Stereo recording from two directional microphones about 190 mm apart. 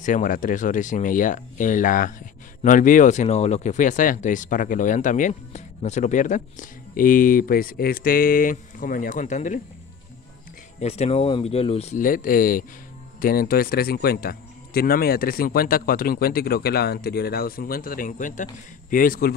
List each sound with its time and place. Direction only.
0.0 s speech: 40° left (ahead or behind)
10.8 s speech: 35° left (ahead or behind); by 19.3 s 50° left (ahead or behind)